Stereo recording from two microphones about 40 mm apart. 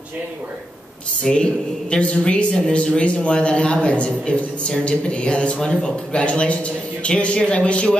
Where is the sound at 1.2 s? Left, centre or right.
Left.